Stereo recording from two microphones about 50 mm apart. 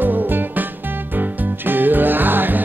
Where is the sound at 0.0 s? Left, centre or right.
Right.